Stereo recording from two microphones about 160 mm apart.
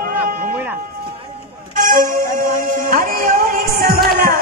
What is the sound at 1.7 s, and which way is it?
Music, 55° right (ahead or behind).